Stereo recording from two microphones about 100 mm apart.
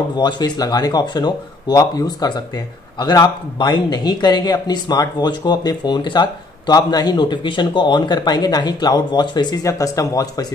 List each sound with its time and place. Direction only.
0.2 s speech: 45° left (ahead or behind)
9.7 s speech: 35° left (ahead or behind)